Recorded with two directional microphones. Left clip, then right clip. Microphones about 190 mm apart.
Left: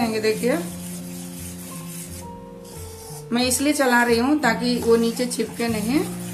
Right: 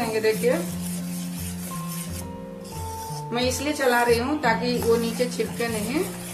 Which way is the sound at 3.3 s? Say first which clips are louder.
Left 4 dB; 55° left (ahead or behind).